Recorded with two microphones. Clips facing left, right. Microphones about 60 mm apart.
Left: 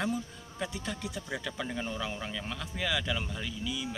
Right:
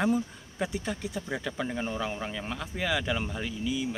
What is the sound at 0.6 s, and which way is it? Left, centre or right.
A man's voice, centre.